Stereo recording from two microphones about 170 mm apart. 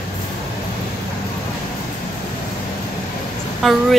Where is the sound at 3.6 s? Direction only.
Centre (ahead or behind).